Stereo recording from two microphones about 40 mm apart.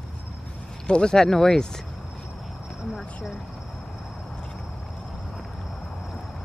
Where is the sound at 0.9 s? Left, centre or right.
Centre.